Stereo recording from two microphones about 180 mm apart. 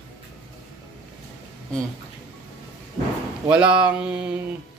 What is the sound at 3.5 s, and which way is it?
Speech, 5° right (ahead or behind).